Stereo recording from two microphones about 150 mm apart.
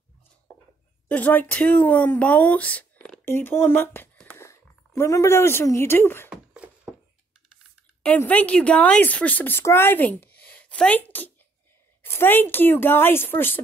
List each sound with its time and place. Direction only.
1.0 s speech: 10° left (ahead or behind)
6.3 s beatboxing: 10° right (ahead or behind)
8.2 s speech: 10° left (ahead or behind)